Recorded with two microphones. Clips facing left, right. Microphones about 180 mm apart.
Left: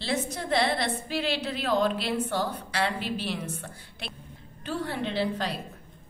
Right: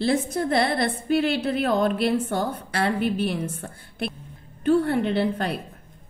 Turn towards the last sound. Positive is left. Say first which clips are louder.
# right 5 dB
turn(degrees=-55)  # may be behind; listen again after turning